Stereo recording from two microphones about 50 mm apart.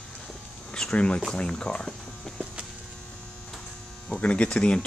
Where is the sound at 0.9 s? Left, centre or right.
Left.